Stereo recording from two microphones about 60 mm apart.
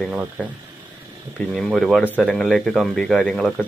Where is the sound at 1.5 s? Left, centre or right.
Centre.